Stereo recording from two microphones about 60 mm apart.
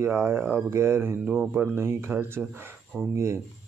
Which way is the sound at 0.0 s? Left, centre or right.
Right.